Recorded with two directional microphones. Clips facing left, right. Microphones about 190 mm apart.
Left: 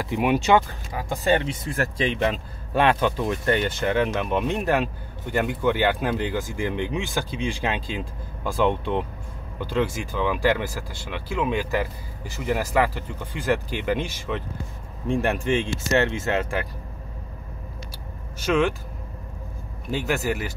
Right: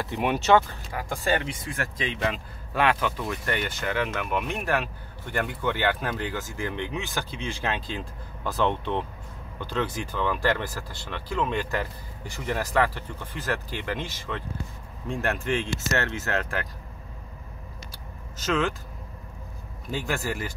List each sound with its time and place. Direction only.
0.0 s speech: 10° left (ahead or behind)
1.7 s speech: 35° left (ahead or behind); by 16.6 s 15° left (ahead or behind)
18.4 s speech: 10° left (ahead or behind)
20.1 s speech: 10° left (ahead or behind)